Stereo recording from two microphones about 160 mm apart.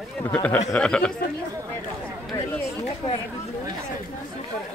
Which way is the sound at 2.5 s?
20° left (ahead or behind).